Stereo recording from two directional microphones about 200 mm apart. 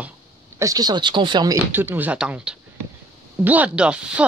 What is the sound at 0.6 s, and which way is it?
Speech, 20° right (ahead or behind).